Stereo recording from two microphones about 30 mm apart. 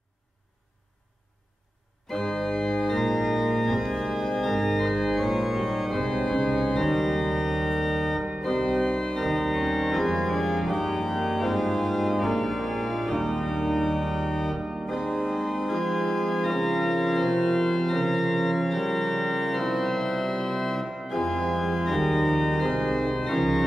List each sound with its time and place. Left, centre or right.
2.4 s organ: centre
2.8 s organ: centre
3.1 s organ: centre
5.9 s organ: centre
6.8 s organ: centre
22.7 s organ: centre